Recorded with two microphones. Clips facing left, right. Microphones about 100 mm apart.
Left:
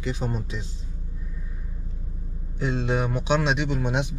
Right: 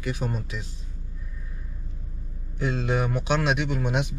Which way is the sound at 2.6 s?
20° left (ahead or behind).